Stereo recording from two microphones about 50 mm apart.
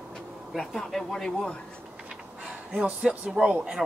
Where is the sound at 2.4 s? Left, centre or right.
Centre.